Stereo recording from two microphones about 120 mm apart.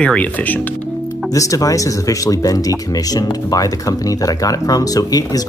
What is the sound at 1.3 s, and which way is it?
Speech, 25° left (ahead or behind).